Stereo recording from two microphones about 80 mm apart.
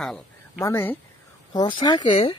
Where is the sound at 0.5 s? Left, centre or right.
Left.